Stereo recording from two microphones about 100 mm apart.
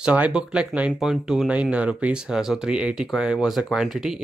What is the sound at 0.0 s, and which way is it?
Speech, 10° right (ahead or behind).